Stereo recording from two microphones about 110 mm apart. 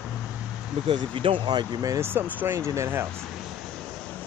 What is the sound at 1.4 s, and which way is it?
Speech, 40° right (ahead or behind).